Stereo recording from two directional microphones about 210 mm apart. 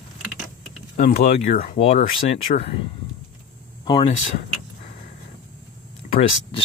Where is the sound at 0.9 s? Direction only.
50° left (ahead or behind).